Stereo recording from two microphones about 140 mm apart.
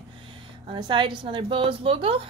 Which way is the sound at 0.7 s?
35° right (ahead or behind).